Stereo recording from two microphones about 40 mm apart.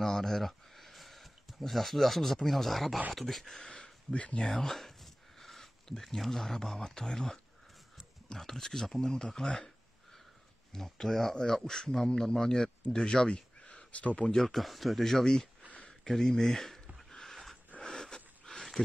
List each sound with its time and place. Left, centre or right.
0.0 s speech: centre
3.5 s a sound: centre
4.2 s speech: left
4.5 s speech: centre
8.4 s speech: centre
10.7 s speech: centre
11.3 s speech: centre
13.3 s a sound: left
13.9 s speech: left
14.3 s speech: centre
14.6 s speech: centre
16.0 s a sound: centre
17.7 s sniff: centre